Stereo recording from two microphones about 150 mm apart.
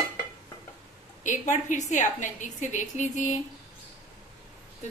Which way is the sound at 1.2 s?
55° left (ahead or behind).